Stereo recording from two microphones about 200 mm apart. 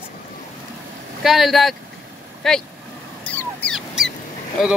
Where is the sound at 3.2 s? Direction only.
5° left (ahead or behind).